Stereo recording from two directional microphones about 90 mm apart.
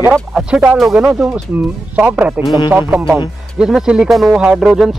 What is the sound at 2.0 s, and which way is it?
Speech, 15° right (ahead or behind).